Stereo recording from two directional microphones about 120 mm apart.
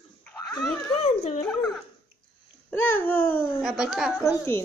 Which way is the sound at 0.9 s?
60° left (ahead or behind).